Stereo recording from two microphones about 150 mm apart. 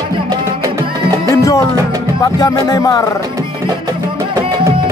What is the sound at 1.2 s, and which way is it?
Music, 20° left (ahead or behind).